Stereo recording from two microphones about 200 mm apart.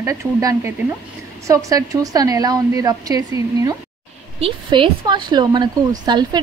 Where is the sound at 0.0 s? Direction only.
15° right (ahead or behind).